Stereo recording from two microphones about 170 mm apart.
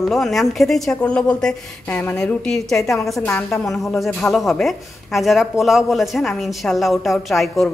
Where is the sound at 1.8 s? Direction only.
15° left (ahead or behind).